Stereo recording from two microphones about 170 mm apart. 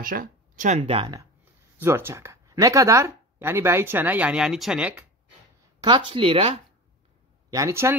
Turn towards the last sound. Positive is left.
turn(degrees=-15)  # may be behind; listen again after turning